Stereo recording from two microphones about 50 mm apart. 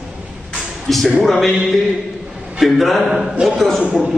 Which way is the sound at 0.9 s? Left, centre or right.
Centre.